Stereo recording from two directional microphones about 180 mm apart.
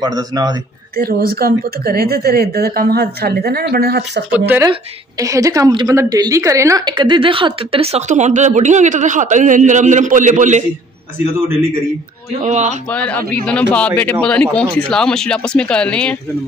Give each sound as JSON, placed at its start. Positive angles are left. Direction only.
{"t": 0.0, "sound": "a man's voice", "side_deg": -20}
{"t": 0.9, "sound": "speech", "side_deg": -55}
{"t": 4.3, "sound": "a woman's voice", "side_deg": -10}
{"t": 12.4, "sound": "a woman's voice", "side_deg": -40}
{"t": 12.9, "sound": "speech", "side_deg": 10}